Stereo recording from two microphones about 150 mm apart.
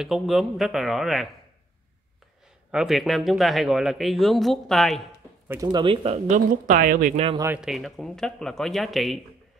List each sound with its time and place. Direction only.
0.0 s speech: centre (ahead or behind)
2.7 s speech: 5° right (ahead or behind)
5.5 s speech: 25° right (ahead or behind); by 7.2 s 65° right (ahead or behind)
7.3 s speech: 15° right (ahead or behind)
7.6 s speech: centre (ahead or behind)